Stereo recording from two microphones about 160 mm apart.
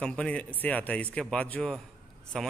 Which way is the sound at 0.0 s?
5° left (ahead or behind).